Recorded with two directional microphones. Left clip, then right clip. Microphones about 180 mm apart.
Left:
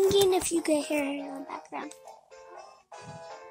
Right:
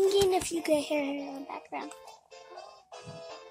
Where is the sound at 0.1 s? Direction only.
20° left (ahead or behind).